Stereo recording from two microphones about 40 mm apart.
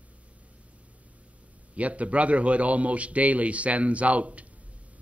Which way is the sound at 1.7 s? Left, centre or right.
Right.